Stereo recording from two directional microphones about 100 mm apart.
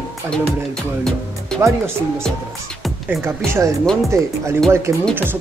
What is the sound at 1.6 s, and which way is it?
Speech, 25° right (ahead or behind).